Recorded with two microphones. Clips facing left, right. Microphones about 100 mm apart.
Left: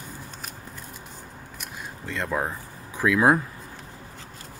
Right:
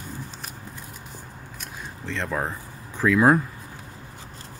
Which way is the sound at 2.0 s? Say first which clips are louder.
Even; 5° left (ahead or behind).